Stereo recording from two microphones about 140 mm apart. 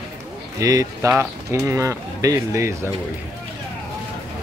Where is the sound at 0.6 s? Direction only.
25° right (ahead or behind).